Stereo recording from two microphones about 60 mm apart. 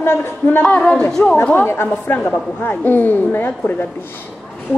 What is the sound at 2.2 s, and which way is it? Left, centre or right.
A woman's voice, left.